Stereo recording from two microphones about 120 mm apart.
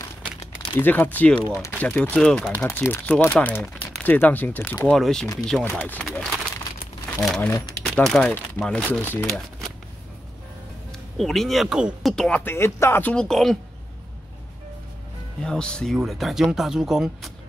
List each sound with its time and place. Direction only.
0.7 s speech: 15° left (ahead or behind)
2.5 s speech: 20° left (ahead or behind)
4.8 s speech: 5° left (ahead or behind)
5.7 s speech: 15° left (ahead or behind)
7.2 s speech: centre (ahead or behind)
9.0 s speech: 15° left (ahead or behind)
11.1 s speech: centre (ahead or behind); by 13.1 s 20° left (ahead or behind)
13.1 s speech: 5° left (ahead or behind)
15.4 s speech: 5° left (ahead or behind)